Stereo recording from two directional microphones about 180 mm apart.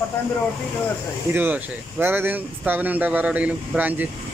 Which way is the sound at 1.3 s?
10° right (ahead or behind).